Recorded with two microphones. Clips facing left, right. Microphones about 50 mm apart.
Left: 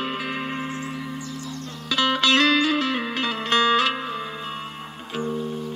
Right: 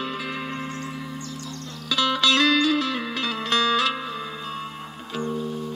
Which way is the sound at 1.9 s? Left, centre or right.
Left.